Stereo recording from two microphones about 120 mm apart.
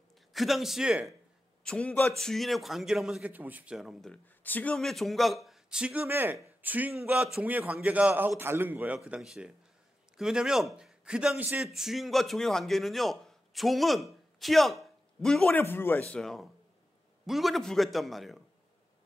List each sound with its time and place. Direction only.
0.3 s a man's voice: centre (ahead or behind)
1.6 s a man's voice: 10° left (ahead or behind)
4.4 s speech: 15° left (ahead or behind)
4.7 s a man's voice: centre (ahead or behind)
15.5 s a man's voice: 20° left (ahead or behind)
16.1 s a man's voice: 5° left (ahead or behind)